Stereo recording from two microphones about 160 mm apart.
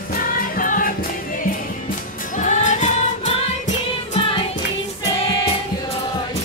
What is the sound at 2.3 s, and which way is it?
Music, 50° left (ahead or behind).